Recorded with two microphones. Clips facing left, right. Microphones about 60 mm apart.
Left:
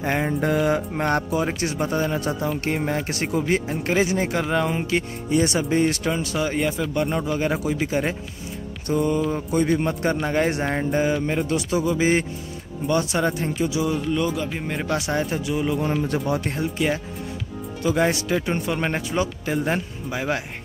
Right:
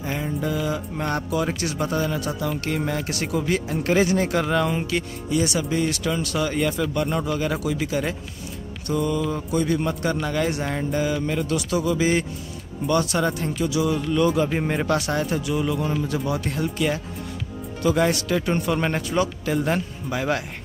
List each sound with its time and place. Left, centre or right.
0.0 s speech: left
1.4 s speech: left
4.9 s speech: left
6.1 s speech: centre
7.3 s speech: left
14.0 s music: centre
14.3 s a man's voice: centre
14.9 s speech: centre
16.1 s speech: left
16.6 s speech: centre